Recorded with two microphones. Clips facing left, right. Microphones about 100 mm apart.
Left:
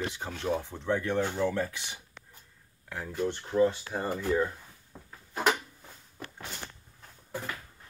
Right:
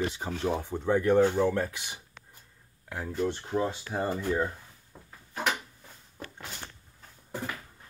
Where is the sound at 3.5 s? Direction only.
20° right (ahead or behind).